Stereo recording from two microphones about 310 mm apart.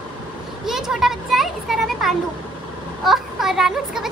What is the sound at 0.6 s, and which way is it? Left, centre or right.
Children playing, centre.